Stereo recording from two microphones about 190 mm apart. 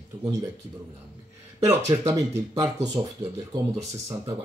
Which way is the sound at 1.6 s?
15° right (ahead or behind).